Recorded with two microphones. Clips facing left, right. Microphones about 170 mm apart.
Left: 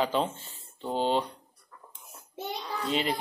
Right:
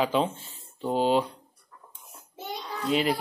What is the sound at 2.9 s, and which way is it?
Speech, 10° right (ahead or behind).